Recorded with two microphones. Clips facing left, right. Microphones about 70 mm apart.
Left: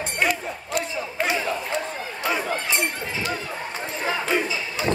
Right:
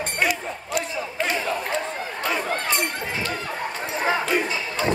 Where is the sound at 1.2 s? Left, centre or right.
Centre.